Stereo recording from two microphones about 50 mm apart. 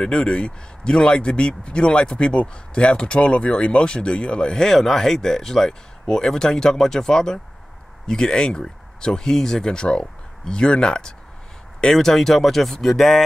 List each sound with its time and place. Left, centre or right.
0.0 s speech: centre